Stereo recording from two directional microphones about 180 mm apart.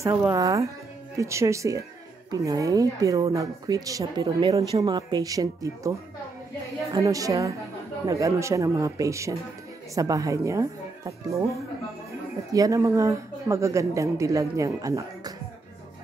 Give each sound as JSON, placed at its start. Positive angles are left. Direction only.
{"t": 0.0, "sound": "speech", "side_deg": -15}
{"t": 12.5, "sound": "speech", "side_deg": -20}